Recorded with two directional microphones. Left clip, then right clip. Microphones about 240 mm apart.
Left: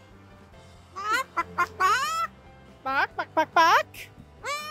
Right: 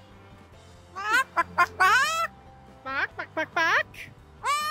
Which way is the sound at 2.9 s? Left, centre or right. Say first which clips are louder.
Left 4 dB; centre.